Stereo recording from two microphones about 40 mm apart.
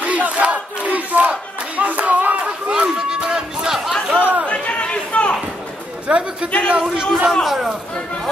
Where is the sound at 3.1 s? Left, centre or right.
Right.